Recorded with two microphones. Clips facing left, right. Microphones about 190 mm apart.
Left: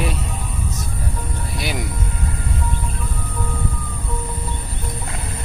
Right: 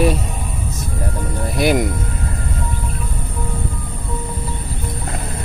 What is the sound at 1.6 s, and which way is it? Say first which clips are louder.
Music: right 11 dB; 50° right (ahead or behind).